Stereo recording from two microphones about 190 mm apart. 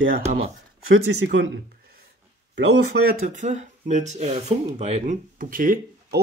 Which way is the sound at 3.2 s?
40° right (ahead or behind).